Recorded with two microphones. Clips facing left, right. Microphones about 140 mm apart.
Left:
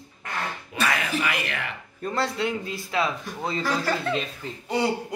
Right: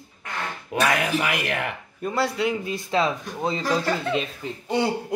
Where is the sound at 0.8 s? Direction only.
60° right (ahead or behind).